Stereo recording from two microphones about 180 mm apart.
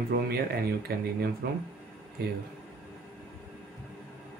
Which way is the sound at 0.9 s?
60° right (ahead or behind).